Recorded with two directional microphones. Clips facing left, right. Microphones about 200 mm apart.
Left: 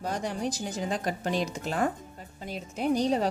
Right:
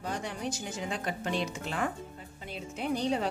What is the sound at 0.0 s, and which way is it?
Speech, 40° left (ahead or behind).